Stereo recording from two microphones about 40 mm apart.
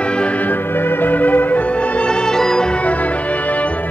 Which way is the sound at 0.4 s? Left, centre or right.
Left.